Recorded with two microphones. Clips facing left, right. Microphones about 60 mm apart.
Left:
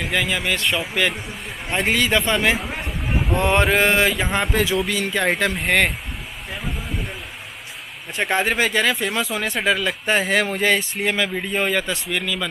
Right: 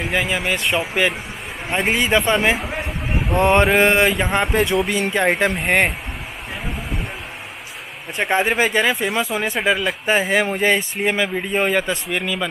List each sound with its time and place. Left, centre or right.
0.0 s speech: centre
3.4 s mantra: centre
5.1 s speech: centre
8.2 s speech: centre